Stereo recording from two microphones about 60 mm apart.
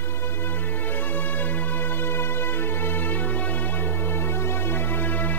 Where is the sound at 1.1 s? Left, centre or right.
Left.